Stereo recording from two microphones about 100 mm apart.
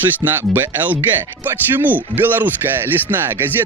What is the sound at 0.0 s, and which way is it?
Speech, 20° right (ahead or behind).